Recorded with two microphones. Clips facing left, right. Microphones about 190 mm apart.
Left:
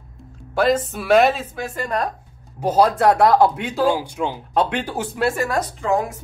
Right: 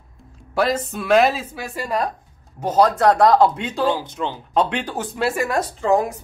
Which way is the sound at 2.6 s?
10° left (ahead or behind).